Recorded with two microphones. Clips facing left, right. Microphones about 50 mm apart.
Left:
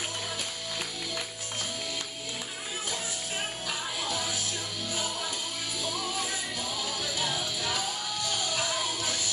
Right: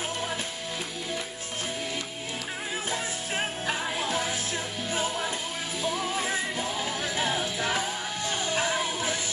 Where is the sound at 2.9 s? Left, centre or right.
Right.